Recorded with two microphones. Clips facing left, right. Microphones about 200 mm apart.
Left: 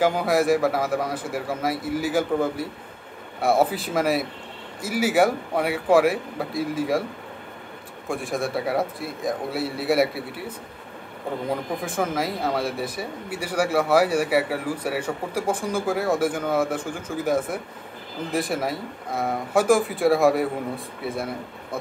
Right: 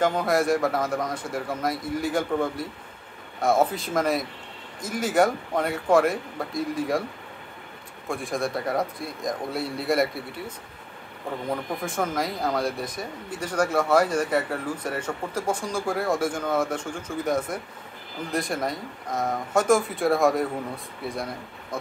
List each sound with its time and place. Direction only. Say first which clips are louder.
0.0 s a man's voice: left 2 dB; 5° left (ahead or behind)
8.1 s a man's voice: left 1 dB; centre (ahead or behind)
11.8 s a man's voice: left 2 dB; 5° left (ahead or behind)